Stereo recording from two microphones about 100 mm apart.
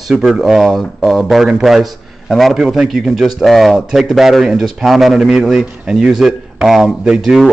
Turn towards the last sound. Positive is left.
turn(degrees=-5)  # may be behind; listen again after turning